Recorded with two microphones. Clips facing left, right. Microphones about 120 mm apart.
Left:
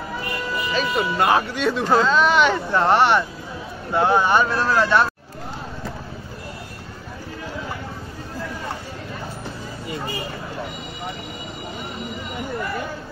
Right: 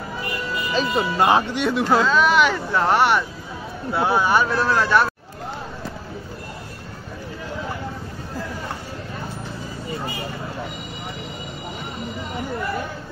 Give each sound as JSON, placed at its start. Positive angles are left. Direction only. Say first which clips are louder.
{"t": 0.7, "sound": "speech", "louder": "right 1 dB", "side_deg": -30}
{"t": 1.9, "sound": "speech", "louder": "left 1 dB", "side_deg": -5}